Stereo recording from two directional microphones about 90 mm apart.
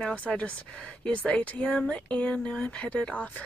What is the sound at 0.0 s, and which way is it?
Speech, 15° left (ahead or behind).